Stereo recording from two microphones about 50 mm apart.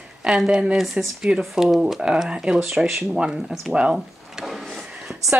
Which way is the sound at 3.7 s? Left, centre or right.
Centre.